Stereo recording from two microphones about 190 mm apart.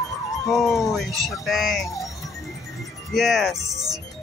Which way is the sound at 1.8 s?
15° left (ahead or behind).